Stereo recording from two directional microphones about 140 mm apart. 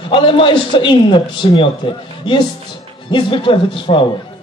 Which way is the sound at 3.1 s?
35° left (ahead or behind).